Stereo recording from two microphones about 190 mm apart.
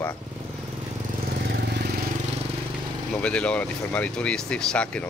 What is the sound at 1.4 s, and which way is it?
Vehicle, 55° right (ahead or behind).